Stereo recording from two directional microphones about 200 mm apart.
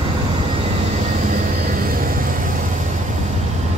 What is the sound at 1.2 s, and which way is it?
Vehicle, 45° right (ahead or behind).